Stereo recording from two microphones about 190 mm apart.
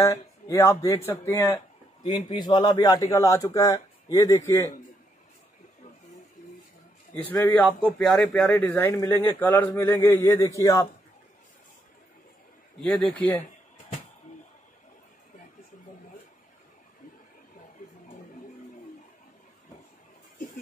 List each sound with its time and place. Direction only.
0.0 s a man's voice: 15° left (ahead or behind)
7.2 s a man's voice: 10° left (ahead or behind)
12.8 s a man's voice: 5° left (ahead or behind)